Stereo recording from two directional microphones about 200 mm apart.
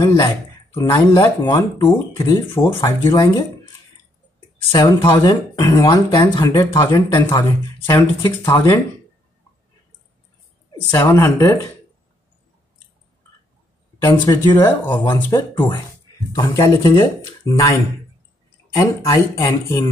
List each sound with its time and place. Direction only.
0.0 s speech: 15° left (ahead or behind)
4.6 s speech: 25° left (ahead or behind)
10.9 s speech: 15° left (ahead or behind)
14.0 s speech: 15° left (ahead or behind)
19.3 s speech: 15° left (ahead or behind)